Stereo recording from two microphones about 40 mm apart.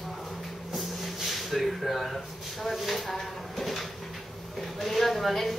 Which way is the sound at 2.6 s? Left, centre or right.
Centre.